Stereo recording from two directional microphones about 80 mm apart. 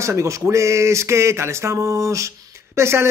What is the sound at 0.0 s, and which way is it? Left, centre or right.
Speech, right.